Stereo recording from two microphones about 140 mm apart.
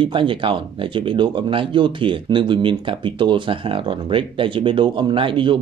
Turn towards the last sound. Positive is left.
turn(degrees=-35)  # may be behind; listen again after turning